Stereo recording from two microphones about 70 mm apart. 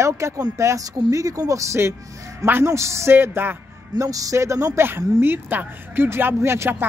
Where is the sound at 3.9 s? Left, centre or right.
Right.